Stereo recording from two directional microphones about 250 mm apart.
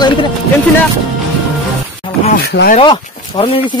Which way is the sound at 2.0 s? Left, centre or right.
Left.